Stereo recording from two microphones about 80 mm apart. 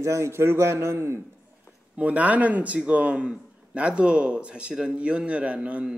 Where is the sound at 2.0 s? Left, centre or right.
Centre.